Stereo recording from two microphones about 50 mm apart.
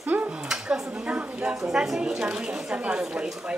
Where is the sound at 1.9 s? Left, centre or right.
Centre.